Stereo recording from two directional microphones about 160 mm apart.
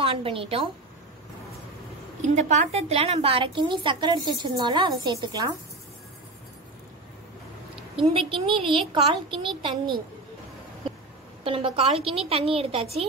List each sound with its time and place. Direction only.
0.0 s a woman's voice: 35° right (ahead or behind)
2.2 s a woman's voice: 45° right (ahead or behind); by 5.5 s 25° right (ahead or behind)
7.9 s a woman's voice: 35° right (ahead or behind)
11.4 s a woman's voice: 35° right (ahead or behind)